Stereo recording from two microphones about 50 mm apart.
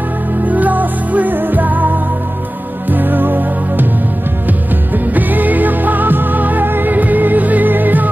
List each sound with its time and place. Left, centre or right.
0.5 s music: right
4.9 s music: right